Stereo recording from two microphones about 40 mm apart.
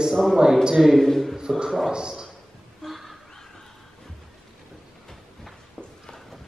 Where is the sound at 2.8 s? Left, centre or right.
Centre.